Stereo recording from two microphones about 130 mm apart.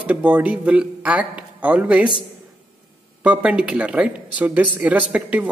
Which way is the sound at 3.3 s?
10° right (ahead or behind).